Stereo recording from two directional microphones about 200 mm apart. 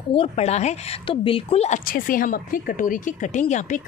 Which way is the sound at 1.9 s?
45° left (ahead or behind).